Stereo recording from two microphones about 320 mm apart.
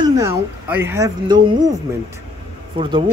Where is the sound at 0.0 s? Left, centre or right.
Centre.